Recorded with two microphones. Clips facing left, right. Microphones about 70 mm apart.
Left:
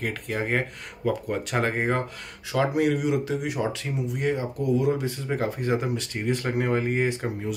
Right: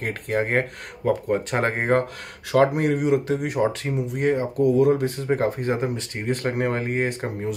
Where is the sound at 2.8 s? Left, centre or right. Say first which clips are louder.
Right 2 dB; right.